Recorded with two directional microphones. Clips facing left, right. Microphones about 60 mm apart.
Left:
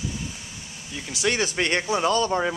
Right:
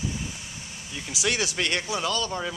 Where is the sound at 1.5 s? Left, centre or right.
Left.